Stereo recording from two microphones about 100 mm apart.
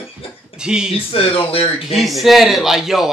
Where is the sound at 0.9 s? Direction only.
65° left (ahead or behind).